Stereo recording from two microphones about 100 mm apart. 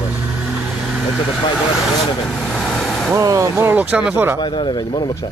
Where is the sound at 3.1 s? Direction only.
30° right (ahead or behind).